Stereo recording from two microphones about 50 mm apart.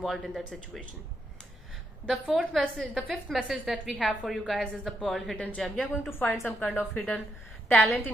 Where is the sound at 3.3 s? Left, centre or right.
Centre.